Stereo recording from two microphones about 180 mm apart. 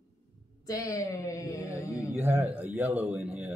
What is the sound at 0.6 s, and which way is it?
Speech, 20° left (ahead or behind).